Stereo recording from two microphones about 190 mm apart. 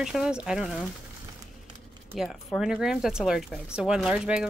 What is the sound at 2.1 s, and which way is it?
Speech, centre (ahead or behind).